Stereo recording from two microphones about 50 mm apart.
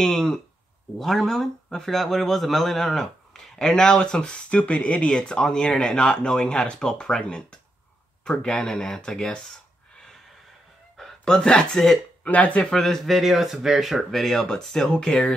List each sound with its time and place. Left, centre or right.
0.0 s speech: centre
11.0 s a sound: centre
11.3 s speech: centre
12.3 s speech: left
12.7 s speech: centre